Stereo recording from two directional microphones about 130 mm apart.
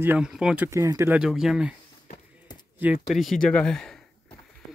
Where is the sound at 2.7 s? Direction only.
10° right (ahead or behind).